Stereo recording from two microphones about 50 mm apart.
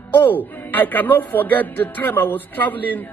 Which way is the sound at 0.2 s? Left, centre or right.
Left.